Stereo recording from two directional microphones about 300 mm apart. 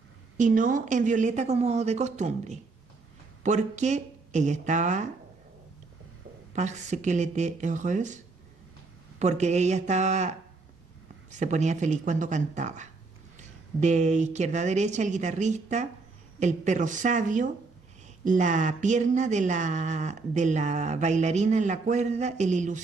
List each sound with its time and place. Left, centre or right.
0.4 s speech: right
6.5 s speech: right
9.2 s speech: right
11.3 s speech: right